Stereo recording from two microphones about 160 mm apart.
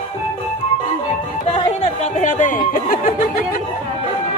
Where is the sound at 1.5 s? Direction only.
45° left (ahead or behind); by 3.6 s 60° left (ahead or behind).